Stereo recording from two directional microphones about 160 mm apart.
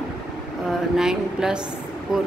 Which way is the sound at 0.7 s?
5° right (ahead or behind).